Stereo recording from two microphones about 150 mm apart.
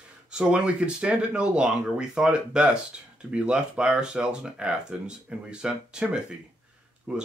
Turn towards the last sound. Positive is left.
turn(degrees=-5)  # may be behind; listen again after turning